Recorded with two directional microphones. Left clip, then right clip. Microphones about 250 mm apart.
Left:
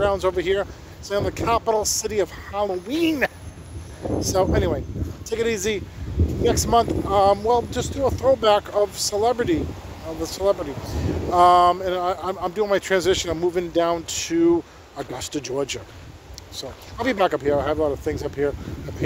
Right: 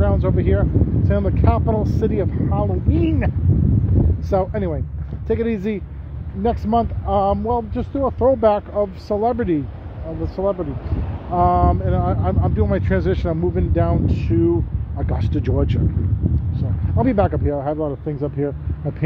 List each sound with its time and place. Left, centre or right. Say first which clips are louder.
0.0 s speech: left 1 dB; centre
4.3 s speech: even; centre
10.2 s speech: even; centre
17.0 s speech: right 1 dB; centre